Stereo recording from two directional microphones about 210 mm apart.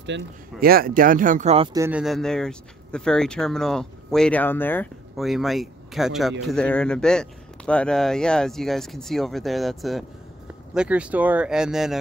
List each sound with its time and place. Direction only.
0.0 s speech: 50° right (ahead or behind); by 1.7 s 30° right (ahead or behind)
1.7 s speech: 10° right (ahead or behind)